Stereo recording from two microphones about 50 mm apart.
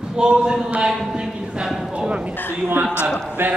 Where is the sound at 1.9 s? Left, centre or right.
Right.